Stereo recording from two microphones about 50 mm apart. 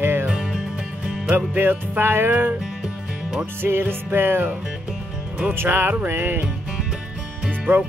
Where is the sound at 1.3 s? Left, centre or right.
Right.